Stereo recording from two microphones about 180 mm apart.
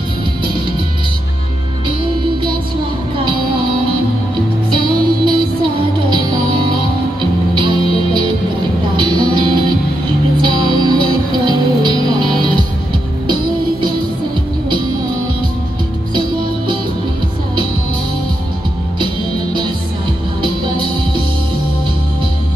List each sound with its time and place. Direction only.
4.6 s music: 25° right (ahead or behind)
10.4 s music: 25° right (ahead or behind)
20.4 s music: 25° right (ahead or behind)